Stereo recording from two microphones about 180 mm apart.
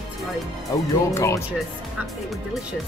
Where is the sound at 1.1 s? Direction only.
15° left (ahead or behind).